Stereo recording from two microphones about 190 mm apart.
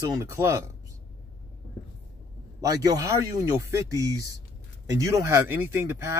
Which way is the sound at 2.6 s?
20° right (ahead or behind).